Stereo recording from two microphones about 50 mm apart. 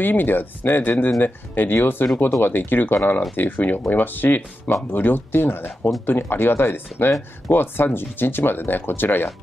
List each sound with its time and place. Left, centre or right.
0.0 s speech: left